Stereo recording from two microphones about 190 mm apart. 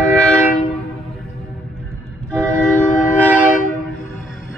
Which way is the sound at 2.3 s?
5° left (ahead or behind).